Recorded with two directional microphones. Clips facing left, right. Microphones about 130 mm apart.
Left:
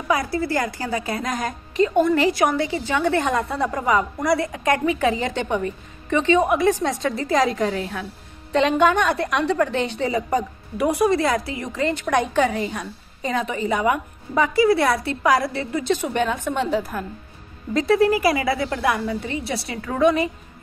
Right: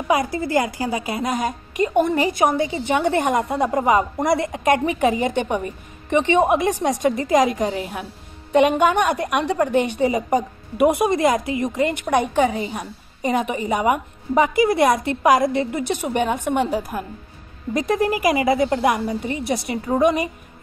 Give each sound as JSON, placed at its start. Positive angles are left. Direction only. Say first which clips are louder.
{"t": 0.1, "sound": "a woman's voice", "louder": "right 2 dB", "side_deg": -15}